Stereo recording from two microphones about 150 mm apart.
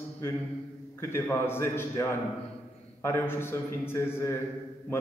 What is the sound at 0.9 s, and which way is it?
A man's voice, 15° left (ahead or behind).